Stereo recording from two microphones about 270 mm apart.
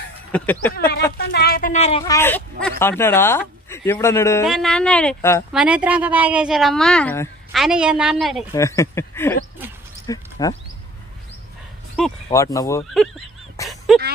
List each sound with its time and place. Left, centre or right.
0.3 s speech: centre
1.1 s a woman's voice: left; by 5.4 s centre
5.5 s a woman's voice: centre
8.5 s speech: centre
10.0 s a sound: centre
12.3 s speech: centre
13.6 s a sound: centre